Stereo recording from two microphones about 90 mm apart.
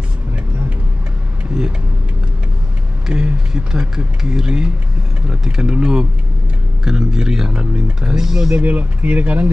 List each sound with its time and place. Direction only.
3.1 s a man's voice: 10° right (ahead or behind)
8.6 s a man's voice: 15° right (ahead or behind)